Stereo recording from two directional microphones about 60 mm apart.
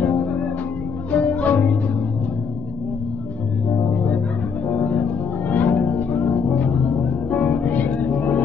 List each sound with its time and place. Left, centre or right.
0.0 s music: left
3.6 s music: left